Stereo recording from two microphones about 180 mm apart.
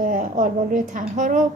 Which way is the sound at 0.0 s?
50° right (ahead or behind).